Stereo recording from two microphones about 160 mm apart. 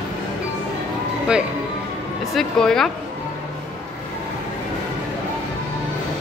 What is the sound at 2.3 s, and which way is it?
Speech, 5° left (ahead or behind).